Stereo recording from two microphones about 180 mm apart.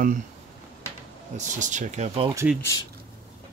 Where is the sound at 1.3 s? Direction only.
45° right (ahead or behind).